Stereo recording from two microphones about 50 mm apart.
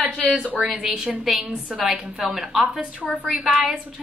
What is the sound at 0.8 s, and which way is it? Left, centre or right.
Speech, centre.